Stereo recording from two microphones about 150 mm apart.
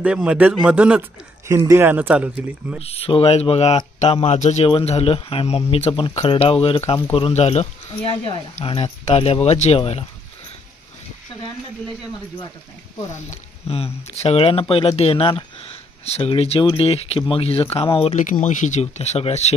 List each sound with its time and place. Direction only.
0.0 s speech: 10° right (ahead or behind)
2.8 s speech: 40° left (ahead or behind)
13.3 s speech: 40° left (ahead or behind)
18.4 s speech: 55° left (ahead or behind)